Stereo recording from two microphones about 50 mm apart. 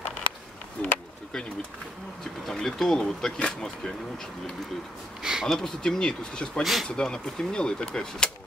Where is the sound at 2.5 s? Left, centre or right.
Centre.